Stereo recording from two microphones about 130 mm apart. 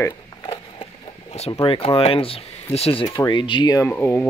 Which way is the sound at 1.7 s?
45° left (ahead or behind).